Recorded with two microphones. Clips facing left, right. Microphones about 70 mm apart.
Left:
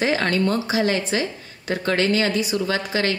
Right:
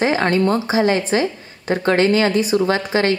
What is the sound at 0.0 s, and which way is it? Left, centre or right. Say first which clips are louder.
A woman's voice: right 4 dB; right.